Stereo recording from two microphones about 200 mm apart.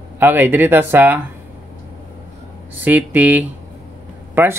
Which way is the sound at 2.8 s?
10° right (ahead or behind).